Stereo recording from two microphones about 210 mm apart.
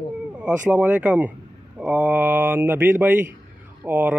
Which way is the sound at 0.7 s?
5° right (ahead or behind).